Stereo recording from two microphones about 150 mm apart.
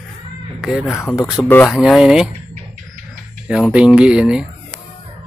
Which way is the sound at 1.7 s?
Centre (ahead or behind).